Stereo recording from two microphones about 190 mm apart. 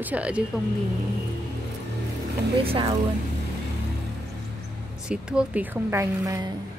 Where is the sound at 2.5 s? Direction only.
30° right (ahead or behind).